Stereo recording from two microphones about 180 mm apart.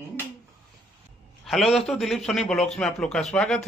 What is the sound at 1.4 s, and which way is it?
A man's voice, centre (ahead or behind).